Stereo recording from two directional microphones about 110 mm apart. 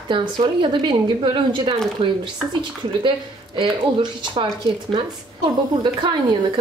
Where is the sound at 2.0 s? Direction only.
65° right (ahead or behind).